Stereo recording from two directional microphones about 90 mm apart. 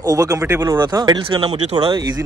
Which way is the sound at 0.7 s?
50° right (ahead or behind).